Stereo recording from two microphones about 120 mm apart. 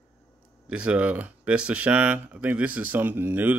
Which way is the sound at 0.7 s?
10° right (ahead or behind).